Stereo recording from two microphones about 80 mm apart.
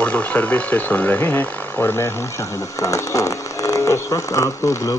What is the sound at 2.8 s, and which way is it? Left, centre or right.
Speech, left.